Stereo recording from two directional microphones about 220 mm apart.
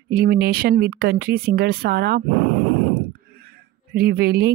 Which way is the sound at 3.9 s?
45° right (ahead or behind).